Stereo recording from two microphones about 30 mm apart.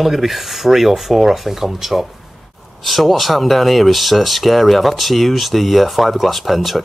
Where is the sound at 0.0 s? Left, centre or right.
Centre.